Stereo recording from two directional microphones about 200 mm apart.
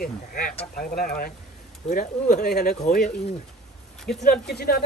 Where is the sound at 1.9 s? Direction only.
40° left (ahead or behind).